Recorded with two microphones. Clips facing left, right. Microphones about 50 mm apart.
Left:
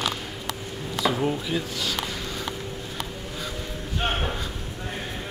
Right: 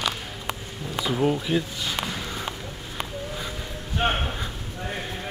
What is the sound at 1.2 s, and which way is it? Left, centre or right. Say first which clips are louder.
Speech: right 3 dB; centre.